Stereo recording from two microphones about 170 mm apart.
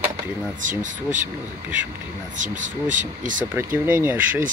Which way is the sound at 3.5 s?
10° right (ahead or behind).